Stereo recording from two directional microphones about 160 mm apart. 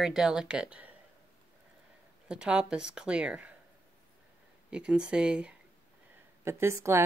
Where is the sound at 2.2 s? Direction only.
5° right (ahead or behind).